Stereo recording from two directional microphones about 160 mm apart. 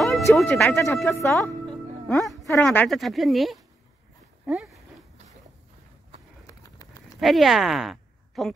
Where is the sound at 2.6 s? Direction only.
10° left (ahead or behind).